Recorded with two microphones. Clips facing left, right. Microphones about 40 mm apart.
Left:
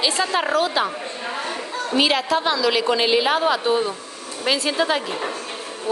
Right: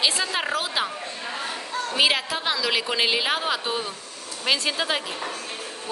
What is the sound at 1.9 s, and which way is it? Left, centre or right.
A woman's voice, centre.